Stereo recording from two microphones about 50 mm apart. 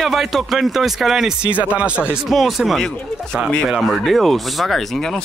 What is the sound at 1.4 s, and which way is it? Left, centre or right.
Speech, right.